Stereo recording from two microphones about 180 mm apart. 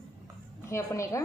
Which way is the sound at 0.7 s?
15° left (ahead or behind).